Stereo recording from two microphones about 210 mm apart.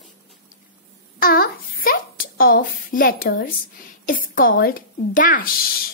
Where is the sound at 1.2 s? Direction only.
45° left (ahead or behind).